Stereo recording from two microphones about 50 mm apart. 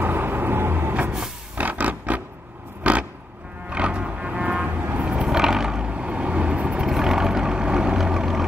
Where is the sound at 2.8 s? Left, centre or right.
Right.